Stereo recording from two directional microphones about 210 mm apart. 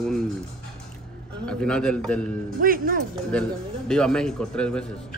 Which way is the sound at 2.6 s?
45° right (ahead or behind).